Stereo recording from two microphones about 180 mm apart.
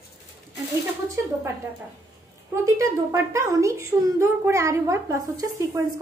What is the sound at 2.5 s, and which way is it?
A child's voice, 15° right (ahead or behind).